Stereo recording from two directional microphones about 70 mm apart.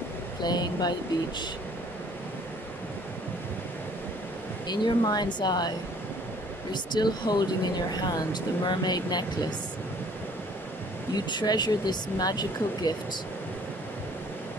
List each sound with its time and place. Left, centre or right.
0.4 s speech: left
4.6 s speech: left
6.7 s speech: left
11.1 s speech: left